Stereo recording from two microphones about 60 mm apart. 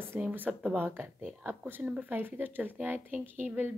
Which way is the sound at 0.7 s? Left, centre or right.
Right.